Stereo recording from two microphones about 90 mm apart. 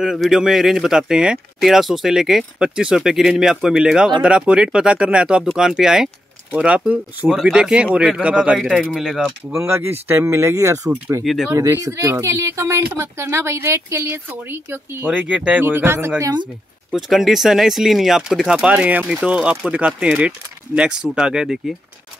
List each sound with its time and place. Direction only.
0.0 s speech: 5° right (ahead or behind)
7.2 s speech: centre (ahead or behind)
8.5 s speech: centre (ahead or behind)
9.5 s speech: 30° right (ahead or behind)
11.2 s speech: 5° right (ahead or behind)
11.5 s speech: 35° right (ahead or behind)
15.0 s speech: 10° right (ahead or behind)
15.6 s speech: 25° right (ahead or behind)
16.9 s speech: 5° right (ahead or behind)